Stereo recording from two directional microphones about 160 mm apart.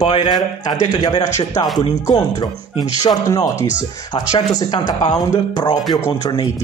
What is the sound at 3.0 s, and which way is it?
Speech, 20° left (ahead or behind).